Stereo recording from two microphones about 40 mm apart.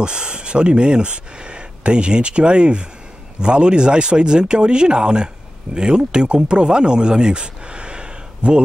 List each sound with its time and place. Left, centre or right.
0.0 s speech: right